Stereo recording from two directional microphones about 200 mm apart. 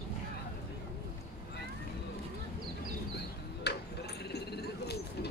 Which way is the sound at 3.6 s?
55° left (ahead or behind).